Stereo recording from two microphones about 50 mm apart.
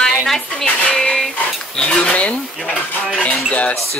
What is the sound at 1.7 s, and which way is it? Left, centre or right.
Cutlery, centre.